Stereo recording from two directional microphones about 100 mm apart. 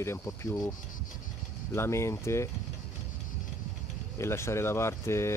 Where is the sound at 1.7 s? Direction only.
25° left (ahead or behind).